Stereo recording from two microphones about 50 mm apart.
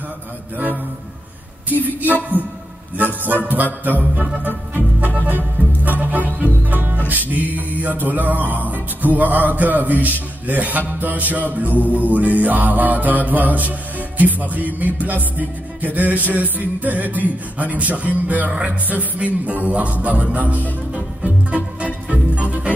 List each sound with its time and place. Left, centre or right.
1.7 s music: right
3.4 s music: right
19.1 s speech: right
21.2 s music: right